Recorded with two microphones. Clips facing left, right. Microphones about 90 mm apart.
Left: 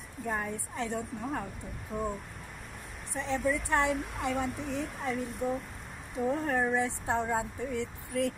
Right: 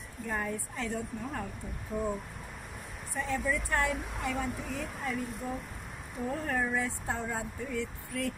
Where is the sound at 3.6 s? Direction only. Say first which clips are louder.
Left 3 dB; 20° left (ahead or behind).